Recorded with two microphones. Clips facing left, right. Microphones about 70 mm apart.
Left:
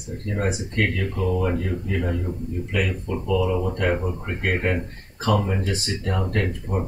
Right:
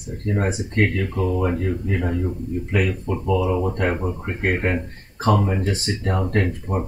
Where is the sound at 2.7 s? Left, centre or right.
Right.